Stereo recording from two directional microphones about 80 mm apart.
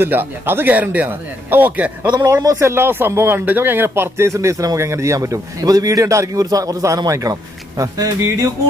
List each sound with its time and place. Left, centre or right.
0.0 s speech: right
2.4 s a man's voice: right
2.7 s a man's voice: right